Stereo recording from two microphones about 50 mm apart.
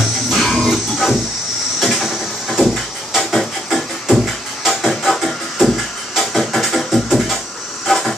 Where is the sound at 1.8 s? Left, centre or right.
Centre.